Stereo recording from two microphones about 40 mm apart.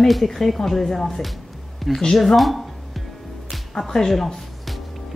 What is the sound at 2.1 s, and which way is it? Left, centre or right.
Speech, centre.